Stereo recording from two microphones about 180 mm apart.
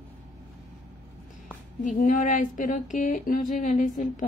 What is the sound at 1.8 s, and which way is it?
Speech, 45° left (ahead or behind).